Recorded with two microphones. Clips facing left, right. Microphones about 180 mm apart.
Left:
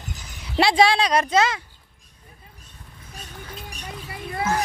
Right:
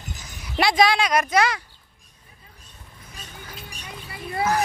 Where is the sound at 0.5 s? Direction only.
30° left (ahead or behind).